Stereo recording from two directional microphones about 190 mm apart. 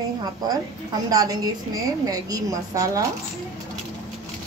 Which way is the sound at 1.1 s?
20° right (ahead or behind).